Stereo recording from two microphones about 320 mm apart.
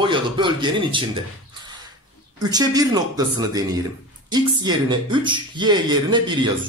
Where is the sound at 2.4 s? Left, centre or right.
Centre.